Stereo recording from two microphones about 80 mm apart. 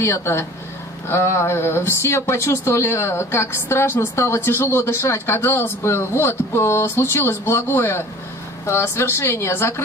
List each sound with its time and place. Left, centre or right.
0.0 s speech: left